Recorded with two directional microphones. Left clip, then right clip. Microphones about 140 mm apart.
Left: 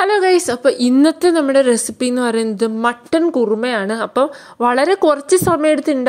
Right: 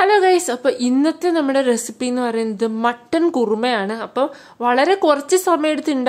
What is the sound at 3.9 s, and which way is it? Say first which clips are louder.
Speech: left 4 dB; 40° left (ahead or behind).